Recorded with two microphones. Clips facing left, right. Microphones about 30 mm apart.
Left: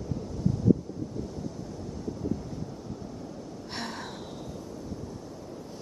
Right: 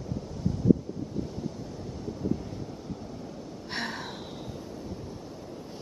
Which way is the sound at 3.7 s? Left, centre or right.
Centre.